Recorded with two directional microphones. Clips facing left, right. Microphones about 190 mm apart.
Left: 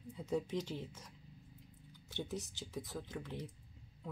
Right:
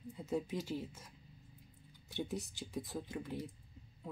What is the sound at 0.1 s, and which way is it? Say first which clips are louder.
Speech: left 1 dB; 5° right (ahead or behind).